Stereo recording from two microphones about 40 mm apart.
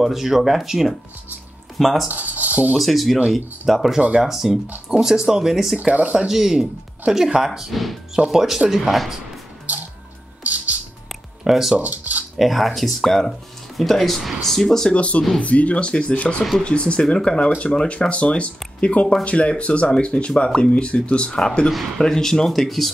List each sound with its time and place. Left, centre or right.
0.0 s speech: centre
2.0 s speech: right
2.8 s speech: centre
5.8 s speech: right
6.2 s speech: centre
10.4 s music: right
11.4 s speech: centre
11.7 s a sound: right
12.4 s speech: centre
14.9 s speech: left
21.6 s speech: centre
22.5 s speech: centre